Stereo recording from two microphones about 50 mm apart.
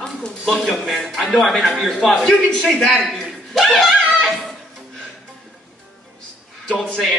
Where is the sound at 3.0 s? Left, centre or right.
Centre.